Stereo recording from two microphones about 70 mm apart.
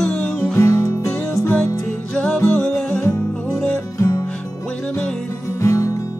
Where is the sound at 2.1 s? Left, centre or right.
Centre.